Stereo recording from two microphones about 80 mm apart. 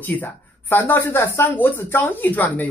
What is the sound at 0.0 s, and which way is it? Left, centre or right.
Speech, left.